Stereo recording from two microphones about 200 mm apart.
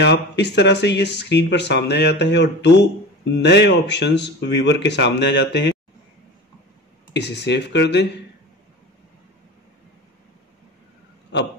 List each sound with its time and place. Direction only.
0.0 s speech: 60° left (ahead or behind)
7.2 s speech: 60° left (ahead or behind)